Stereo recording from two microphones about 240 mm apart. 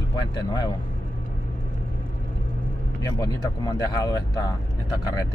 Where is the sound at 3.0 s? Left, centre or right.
Centre.